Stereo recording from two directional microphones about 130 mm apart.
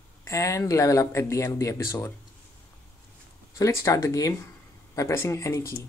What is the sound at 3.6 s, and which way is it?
Speech, 25° left (ahead or behind).